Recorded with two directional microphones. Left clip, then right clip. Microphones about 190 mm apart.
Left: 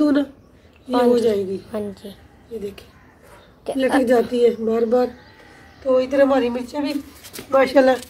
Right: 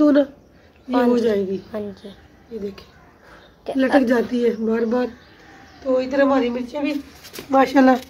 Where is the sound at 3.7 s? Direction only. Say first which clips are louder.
Even; 5° left (ahead or behind).